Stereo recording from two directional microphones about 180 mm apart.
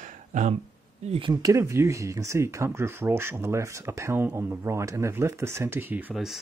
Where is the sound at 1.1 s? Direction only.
25° right (ahead or behind); by 6.4 s centre (ahead or behind).